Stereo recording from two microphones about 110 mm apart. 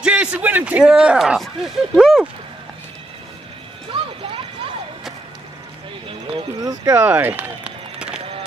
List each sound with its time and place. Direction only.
0.0 s speech: 10° right (ahead or behind)
3.9 s a sound: 55° right (ahead or behind)
6.6 s speech: 35° right (ahead or behind)
7.0 s run: 20° right (ahead or behind)